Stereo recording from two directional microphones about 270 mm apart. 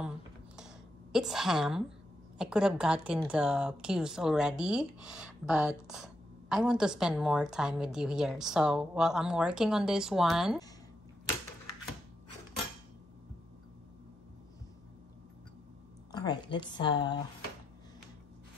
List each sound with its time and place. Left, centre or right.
0.6 s computer keyboard: centre
2.3 s a woman's voice: centre
16.1 s a woman's voice: centre